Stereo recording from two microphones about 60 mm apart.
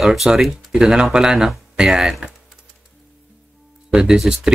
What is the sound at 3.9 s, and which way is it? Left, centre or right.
Speech, centre.